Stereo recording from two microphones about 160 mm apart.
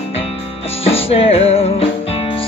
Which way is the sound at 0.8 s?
40° left (ahead or behind).